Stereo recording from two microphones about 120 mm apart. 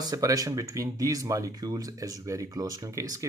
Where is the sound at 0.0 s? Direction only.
30° right (ahead or behind).